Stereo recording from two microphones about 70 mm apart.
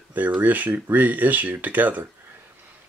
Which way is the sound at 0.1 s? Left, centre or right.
Right.